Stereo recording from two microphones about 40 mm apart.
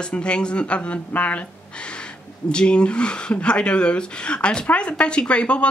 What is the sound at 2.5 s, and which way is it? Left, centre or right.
Speech, left.